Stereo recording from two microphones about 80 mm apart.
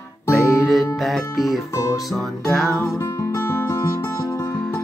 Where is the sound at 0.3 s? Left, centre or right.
Centre.